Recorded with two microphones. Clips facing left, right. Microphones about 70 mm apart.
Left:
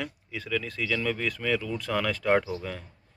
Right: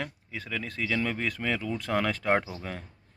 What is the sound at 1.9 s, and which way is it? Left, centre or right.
Speech, right.